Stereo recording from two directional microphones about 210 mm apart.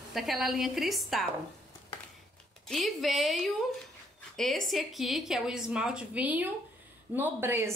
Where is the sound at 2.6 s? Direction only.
Centre (ahead or behind).